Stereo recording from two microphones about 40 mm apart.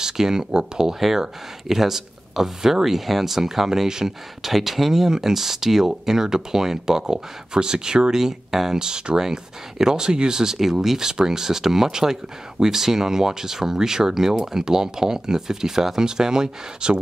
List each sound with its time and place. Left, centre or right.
0.0 s speech: centre
0.9 s speech: centre